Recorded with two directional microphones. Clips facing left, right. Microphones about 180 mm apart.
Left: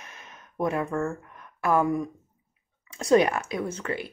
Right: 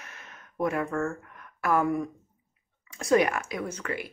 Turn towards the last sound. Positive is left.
turn(degrees=25)  # may be behind; listen again after turning